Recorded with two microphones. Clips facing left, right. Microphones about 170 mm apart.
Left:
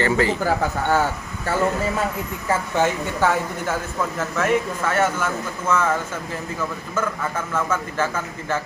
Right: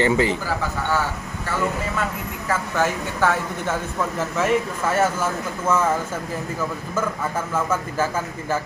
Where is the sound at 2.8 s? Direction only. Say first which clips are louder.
Left 1 dB; 15° left (ahead or behind).